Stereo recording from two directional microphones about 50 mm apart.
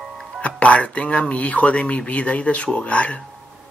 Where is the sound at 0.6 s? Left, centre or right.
Left.